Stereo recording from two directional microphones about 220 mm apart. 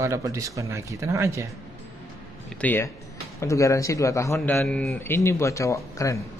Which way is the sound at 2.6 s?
10° left (ahead or behind).